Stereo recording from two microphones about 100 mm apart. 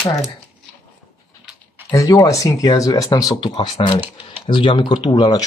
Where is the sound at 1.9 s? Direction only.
35° left (ahead or behind).